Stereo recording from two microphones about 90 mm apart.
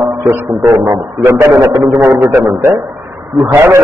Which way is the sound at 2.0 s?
15° right (ahead or behind).